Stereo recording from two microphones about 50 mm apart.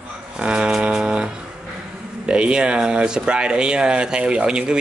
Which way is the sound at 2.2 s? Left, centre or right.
Right.